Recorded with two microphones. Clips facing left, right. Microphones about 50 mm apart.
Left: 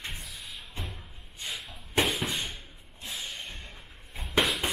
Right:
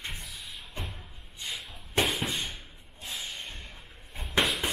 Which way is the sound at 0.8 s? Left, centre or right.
Centre.